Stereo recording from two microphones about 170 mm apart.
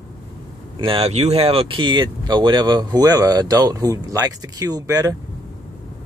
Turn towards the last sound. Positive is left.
turn(degrees=-20)  # may be behind; listen again after turning